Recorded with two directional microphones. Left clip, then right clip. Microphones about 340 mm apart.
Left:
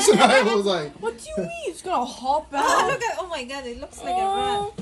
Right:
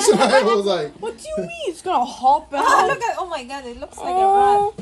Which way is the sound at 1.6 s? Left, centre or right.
Centre.